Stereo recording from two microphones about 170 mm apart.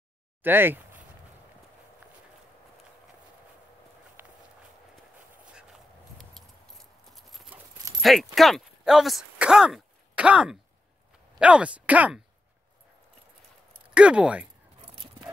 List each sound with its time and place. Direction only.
0.4 s speech: 10° right (ahead or behind)
4.2 s walk: 10° right (ahead or behind)
6.1 s clip-clop: centre (ahead or behind)
8.0 s speech: centre (ahead or behind)
13.9 s speech: 5° right (ahead or behind)
14.8 s dog: 35° right (ahead or behind)